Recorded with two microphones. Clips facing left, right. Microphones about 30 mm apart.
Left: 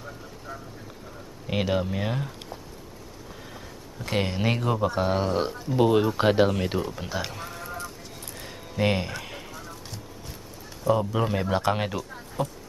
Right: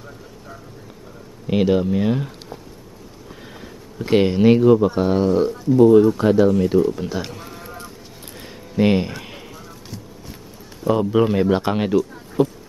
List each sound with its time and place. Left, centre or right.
1.5 s speech: centre
3.6 s a sound: centre
4.4 s speech: centre
5.8 s speech: left
6.9 s speech: centre
8.4 s a sound: centre
10.8 s speech: centre
11.7 s speech: centre
12.4 s speech: centre